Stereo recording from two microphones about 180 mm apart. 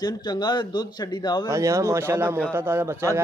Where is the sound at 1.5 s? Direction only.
15° right (ahead or behind).